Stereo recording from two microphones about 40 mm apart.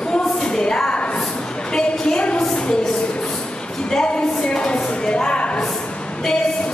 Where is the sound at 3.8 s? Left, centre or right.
Centre.